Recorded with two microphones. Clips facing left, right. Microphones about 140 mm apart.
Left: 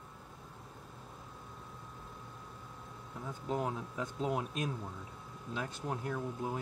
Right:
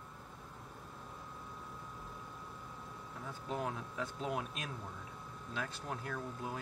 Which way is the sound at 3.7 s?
20° left (ahead or behind).